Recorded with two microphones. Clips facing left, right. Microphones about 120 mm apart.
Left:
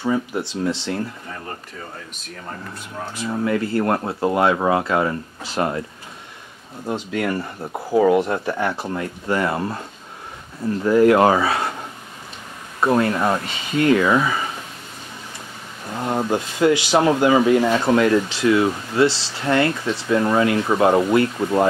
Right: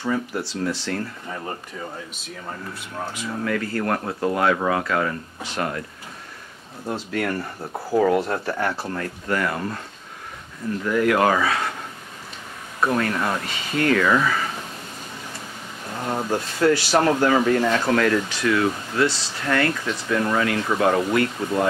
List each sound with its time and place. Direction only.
0.0 s speech: 15° left (ahead or behind)
3.3 s speech: 25° left (ahead or behind)
6.9 s speech: 5° left (ahead or behind); by 9.8 s 25° left (ahead or behind)
10.8 s speech: 30° left (ahead or behind)
12.8 s speech: 25° left (ahead or behind)
15.9 s speech: 15° left (ahead or behind)